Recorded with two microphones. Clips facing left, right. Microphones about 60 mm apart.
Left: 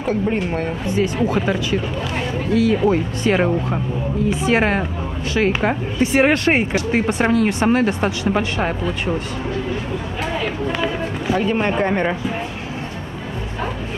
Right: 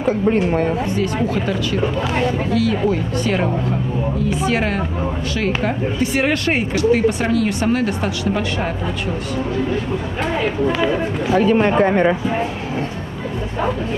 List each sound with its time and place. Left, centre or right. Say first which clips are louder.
0.9 s speech: left 1 dB; left
10.7 s speech: right 4 dB; centre